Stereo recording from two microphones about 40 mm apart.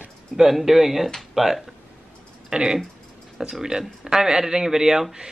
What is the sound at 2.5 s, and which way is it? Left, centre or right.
Speech, centre.